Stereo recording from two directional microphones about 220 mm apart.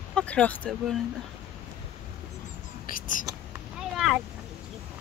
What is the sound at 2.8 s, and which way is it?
Whispering, 40° left (ahead or behind).